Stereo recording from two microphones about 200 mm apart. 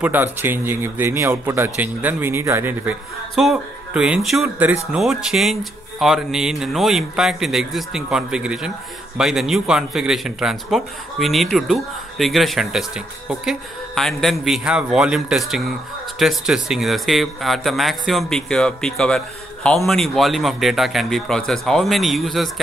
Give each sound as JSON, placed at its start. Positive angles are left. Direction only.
{"t": 0.0, "sound": "speech", "side_deg": -10}